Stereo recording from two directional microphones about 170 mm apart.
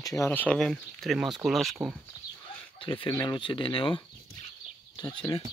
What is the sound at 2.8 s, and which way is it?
Speech, 30° left (ahead or behind).